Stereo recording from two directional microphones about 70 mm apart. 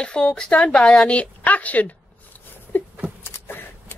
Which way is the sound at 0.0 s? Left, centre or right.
Centre.